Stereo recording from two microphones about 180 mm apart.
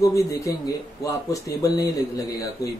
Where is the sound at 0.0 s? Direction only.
15° left (ahead or behind).